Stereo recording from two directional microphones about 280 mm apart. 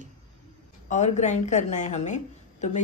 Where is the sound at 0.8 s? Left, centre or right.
Left.